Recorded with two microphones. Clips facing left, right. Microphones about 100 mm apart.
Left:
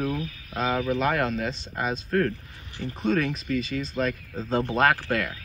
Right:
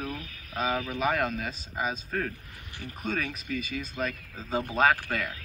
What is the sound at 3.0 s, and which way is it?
Speech, centre (ahead or behind).